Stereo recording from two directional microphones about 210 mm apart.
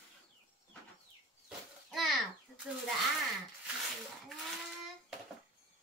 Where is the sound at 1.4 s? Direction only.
Centre (ahead or behind).